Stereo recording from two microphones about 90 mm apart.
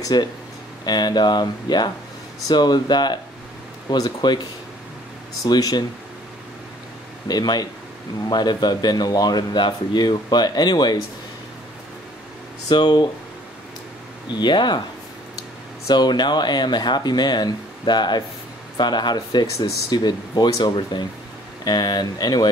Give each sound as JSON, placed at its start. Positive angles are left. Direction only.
{"t": 0.0, "sound": "speech", "side_deg": 50}
{"t": 5.4, "sound": "speech", "side_deg": 45}
{"t": 7.2, "sound": "speech", "side_deg": 50}
{"t": 12.6, "sound": "speech", "side_deg": 55}
{"t": 14.4, "sound": "speech", "side_deg": 55}
{"t": 15.9, "sound": "speech", "side_deg": 55}
{"t": 19.5, "sound": "speech", "side_deg": 45}